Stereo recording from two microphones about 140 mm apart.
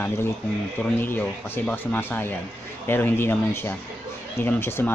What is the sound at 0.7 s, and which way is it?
Speech, 10° left (ahead or behind).